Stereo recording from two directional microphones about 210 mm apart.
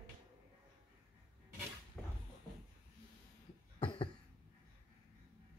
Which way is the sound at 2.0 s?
Centre (ahead or behind).